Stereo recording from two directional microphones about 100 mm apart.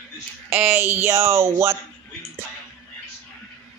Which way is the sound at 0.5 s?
20° right (ahead or behind).